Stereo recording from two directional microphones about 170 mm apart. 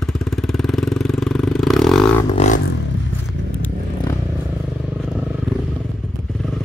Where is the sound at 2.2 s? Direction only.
35° left (ahead or behind).